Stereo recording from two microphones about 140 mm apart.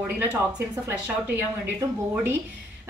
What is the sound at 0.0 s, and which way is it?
Speech, 15° right (ahead or behind).